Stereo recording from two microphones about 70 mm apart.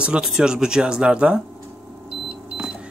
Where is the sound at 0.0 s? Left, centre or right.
Centre.